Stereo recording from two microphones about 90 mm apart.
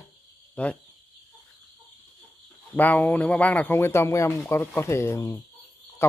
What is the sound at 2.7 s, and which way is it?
A man's voice, 15° left (ahead or behind).